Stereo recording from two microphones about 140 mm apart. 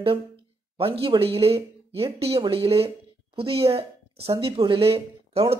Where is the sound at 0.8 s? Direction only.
40° right (ahead or behind).